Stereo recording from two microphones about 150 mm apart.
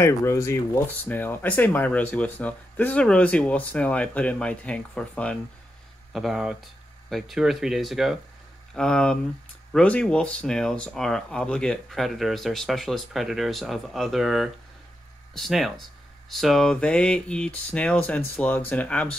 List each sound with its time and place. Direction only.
0.0 s speech: 20° left (ahead or behind)